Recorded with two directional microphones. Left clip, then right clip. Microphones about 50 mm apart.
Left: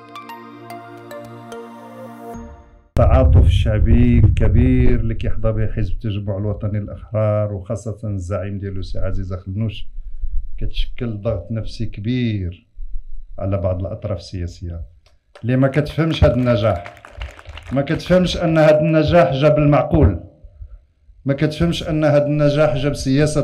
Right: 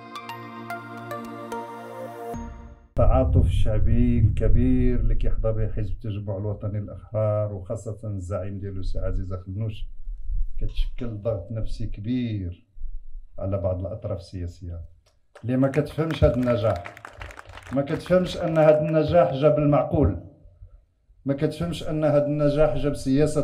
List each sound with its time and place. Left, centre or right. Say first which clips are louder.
2.1 s music: left 1 dB; centre
3.0 s mantra: left 6 dB; left
9.0 s speech: left 5 dB; centre
10.6 s mantra: left 8 dB; left
15.4 s speech: left 5 dB; centre
16.7 s a sound: left 5 dB; centre
17.7 s mantra: left 5 dB; centre
21.3 s mantra: left 7 dB; centre